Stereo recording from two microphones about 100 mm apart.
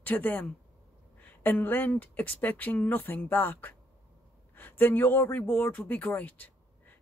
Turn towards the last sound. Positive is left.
turn(degrees=15)  # may be behind; listen again after turning